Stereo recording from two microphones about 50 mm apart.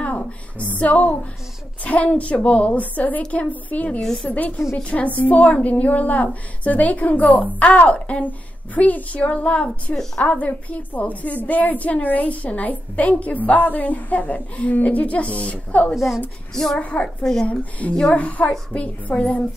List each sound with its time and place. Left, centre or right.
0.0 s a sound: left
1.9 s a woman's voice: left
4.0 s a woman's voice: centre
4.3 s a woman's voice: left
15.9 s a woman's voice: centre
16.5 s a woman's voice: centre
16.8 s a woman's voice: left
17.2 s a woman's voice: centre
17.5 s a woman's voice: left